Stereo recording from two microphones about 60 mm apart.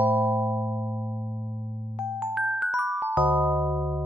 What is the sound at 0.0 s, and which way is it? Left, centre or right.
Music, right.